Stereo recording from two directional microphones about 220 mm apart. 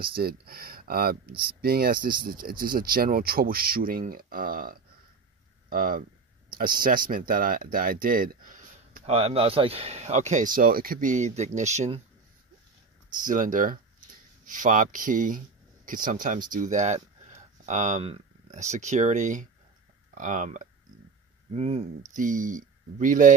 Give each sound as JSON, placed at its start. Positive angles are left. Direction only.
{"t": 0.0, "sound": "speech", "side_deg": -45}
{"t": 13.1, "sound": "speech", "side_deg": -35}